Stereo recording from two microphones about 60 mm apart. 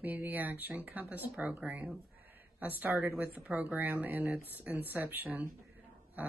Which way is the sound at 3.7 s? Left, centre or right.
Right.